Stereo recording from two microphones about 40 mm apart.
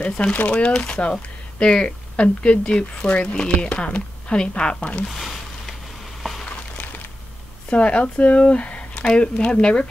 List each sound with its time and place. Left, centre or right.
0.0 s a woman's voice: left
5.2 s a sound: centre
7.7 s a woman's voice: left